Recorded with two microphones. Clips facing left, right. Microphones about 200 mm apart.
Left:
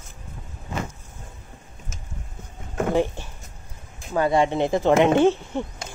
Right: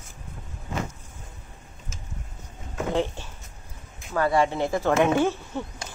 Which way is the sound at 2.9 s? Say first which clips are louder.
Left 3 dB; 15° left (ahead or behind).